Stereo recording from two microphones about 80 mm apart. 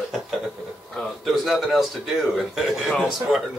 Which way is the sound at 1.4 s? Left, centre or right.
Centre.